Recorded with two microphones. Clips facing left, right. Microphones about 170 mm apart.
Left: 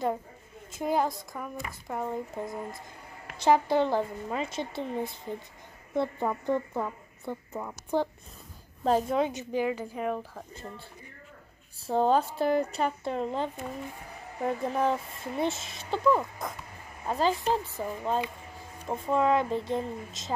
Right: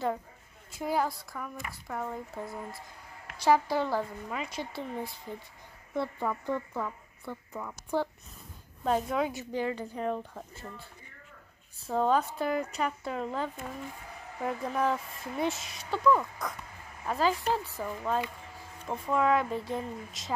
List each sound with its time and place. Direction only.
0.7 s speech: 20° left (ahead or behind)
8.8 s speech: 35° left (ahead or behind)
9.3 s a woman's voice: 15° left (ahead or behind)
10.5 s speech: 20° left (ahead or behind)
11.8 s speech: 30° left (ahead or behind)